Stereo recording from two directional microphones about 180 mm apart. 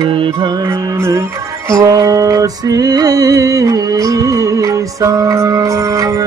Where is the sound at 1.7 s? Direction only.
20° right (ahead or behind).